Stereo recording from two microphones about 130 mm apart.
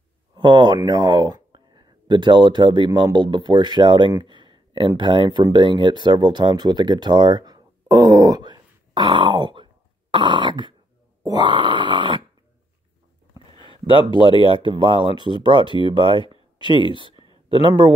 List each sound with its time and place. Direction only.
0.4 s speech: 35° right (ahead or behind)
13.6 s a sound: 40° right (ahead or behind)
14.2 s speech: 45° right (ahead or behind)
17.6 s speech: 35° right (ahead or behind)